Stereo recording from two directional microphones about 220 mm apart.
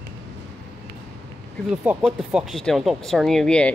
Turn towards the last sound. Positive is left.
turn(degrees=5)  # may be behind; listen again after turning